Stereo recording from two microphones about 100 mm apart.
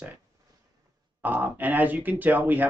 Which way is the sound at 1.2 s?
15° right (ahead or behind).